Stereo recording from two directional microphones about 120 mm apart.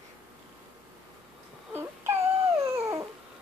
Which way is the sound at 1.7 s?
20° right (ahead or behind).